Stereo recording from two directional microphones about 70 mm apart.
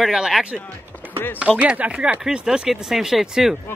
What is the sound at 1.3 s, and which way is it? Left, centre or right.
Speech, centre.